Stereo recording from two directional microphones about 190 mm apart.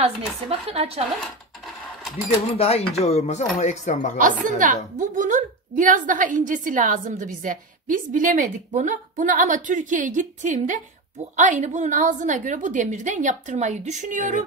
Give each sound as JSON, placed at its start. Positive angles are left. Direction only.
{"t": 0.0, "sound": "a woman's voice", "side_deg": -30}
{"t": 2.5, "sound": "speech", "side_deg": 30}
{"t": 4.2, "sound": "a woman's voice", "side_deg": -45}